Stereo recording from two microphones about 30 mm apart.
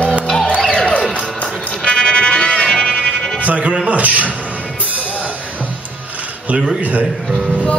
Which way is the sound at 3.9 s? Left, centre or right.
Right.